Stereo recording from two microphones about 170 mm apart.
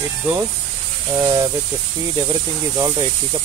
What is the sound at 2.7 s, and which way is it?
Speech, 25° right (ahead or behind).